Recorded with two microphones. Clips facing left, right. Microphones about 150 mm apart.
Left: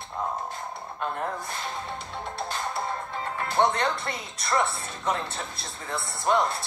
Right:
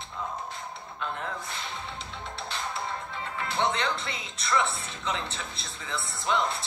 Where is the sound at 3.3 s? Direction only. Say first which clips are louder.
Left 4 dB; 45° left (ahead or behind).